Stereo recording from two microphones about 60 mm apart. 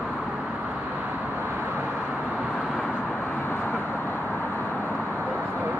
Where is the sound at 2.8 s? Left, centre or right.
Left.